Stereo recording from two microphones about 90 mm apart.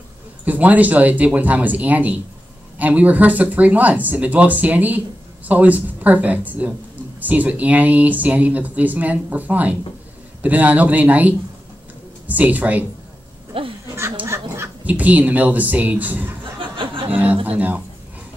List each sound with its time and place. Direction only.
0.5 s speech: 20° right (ahead or behind)
13.5 s a sound: 90° right
14.2 s duck: 30° right (ahead or behind)
14.9 s a man's voice: 20° right (ahead or behind)
16.5 s a sound: 75° right (ahead or behind)
17.1 s speech: 20° right (ahead or behind)